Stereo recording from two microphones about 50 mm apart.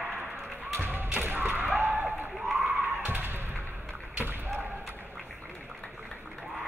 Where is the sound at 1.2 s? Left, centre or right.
Right.